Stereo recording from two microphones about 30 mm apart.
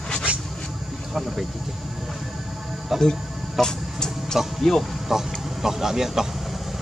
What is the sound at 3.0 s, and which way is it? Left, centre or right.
Music, centre.